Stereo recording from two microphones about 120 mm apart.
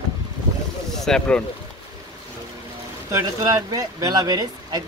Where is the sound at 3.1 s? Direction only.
30° right (ahead or behind).